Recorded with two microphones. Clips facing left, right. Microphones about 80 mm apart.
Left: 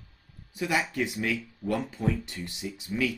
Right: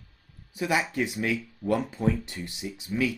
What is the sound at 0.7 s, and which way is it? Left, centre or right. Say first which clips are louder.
Speech: right 1 dB; centre.